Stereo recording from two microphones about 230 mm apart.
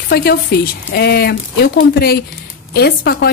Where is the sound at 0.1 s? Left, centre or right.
Left.